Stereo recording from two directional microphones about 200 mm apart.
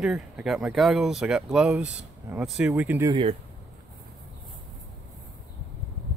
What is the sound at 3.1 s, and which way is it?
Speech, 25° right (ahead or behind).